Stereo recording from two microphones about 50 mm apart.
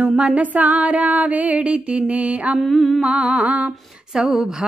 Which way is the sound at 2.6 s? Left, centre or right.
Centre.